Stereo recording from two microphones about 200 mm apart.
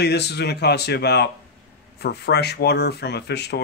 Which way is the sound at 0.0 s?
55° left (ahead or behind).